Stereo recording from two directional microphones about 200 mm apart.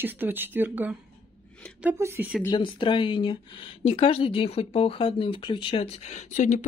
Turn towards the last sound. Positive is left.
turn(degrees=40)  # may be behind; listen again after turning